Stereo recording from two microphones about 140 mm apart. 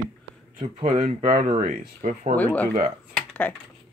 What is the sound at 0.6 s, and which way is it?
Speech, 55° right (ahead or behind).